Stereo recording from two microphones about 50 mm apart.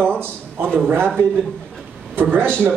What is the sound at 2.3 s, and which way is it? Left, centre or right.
Speech, right.